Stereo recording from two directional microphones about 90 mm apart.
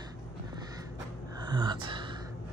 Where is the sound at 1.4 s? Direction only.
55° right (ahead or behind).